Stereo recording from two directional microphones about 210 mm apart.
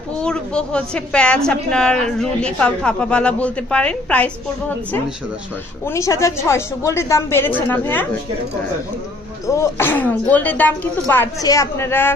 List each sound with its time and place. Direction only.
0.2 s a woman's voice: 5° left (ahead or behind)
5.9 s speech: 15° left (ahead or behind)
9.5 s speech: 10° left (ahead or behind)